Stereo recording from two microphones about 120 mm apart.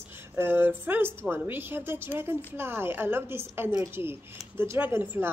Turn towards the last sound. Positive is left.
turn(degrees=-15)  # may be behind; listen again after turning